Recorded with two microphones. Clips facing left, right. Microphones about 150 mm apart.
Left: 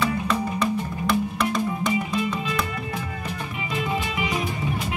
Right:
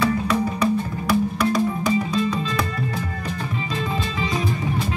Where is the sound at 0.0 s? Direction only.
Centre (ahead or behind).